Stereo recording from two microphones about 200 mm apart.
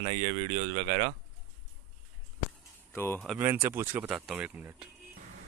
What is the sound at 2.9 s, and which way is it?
Speech, 10° left (ahead or behind).